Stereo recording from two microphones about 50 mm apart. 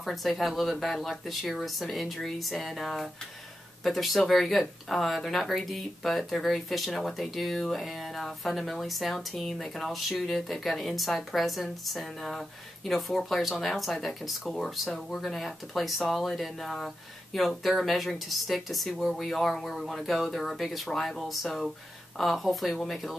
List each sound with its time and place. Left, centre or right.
0.0 s speech: centre